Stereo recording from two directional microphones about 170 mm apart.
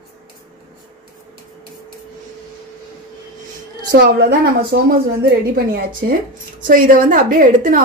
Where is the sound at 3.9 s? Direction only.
70° right (ahead or behind).